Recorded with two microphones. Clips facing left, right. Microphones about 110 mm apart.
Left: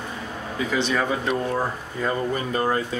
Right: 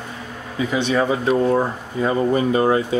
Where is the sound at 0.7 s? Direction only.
20° right (ahead or behind).